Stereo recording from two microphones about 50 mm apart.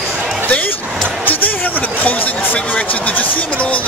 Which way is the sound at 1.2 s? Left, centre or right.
Left.